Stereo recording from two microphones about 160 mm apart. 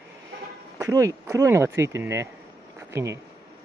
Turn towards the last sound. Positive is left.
turn(degrees=-15)  # may be behind; listen again after turning